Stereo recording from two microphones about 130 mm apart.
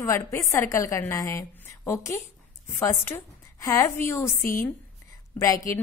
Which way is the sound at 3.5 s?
25° left (ahead or behind).